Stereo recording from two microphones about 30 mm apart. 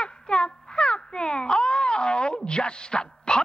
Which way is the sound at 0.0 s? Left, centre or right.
Left.